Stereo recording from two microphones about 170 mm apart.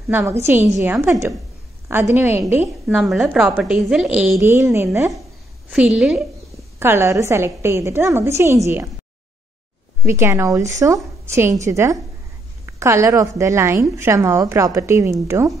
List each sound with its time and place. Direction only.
0.1 s a woman's voice: 15° right (ahead or behind)
5.7 s a woman's voice: 5° right (ahead or behind)
6.8 s a woman's voice: 15° right (ahead or behind)
10.0 s a woman's voice: 15° right (ahead or behind)